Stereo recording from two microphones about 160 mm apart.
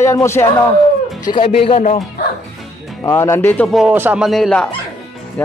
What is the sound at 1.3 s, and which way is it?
Speech, 35° left (ahead or behind).